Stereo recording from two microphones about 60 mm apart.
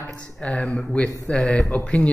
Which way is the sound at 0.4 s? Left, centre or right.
Centre.